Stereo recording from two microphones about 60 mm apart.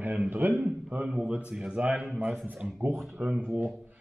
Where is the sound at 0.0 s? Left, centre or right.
Right.